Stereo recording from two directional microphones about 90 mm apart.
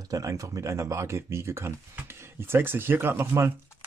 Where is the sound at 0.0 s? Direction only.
40° right (ahead or behind).